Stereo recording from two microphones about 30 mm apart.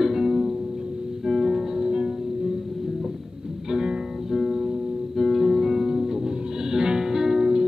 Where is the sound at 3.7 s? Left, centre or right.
Right.